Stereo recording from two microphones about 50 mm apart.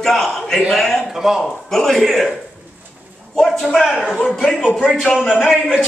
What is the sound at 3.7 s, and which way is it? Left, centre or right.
Speech, centre.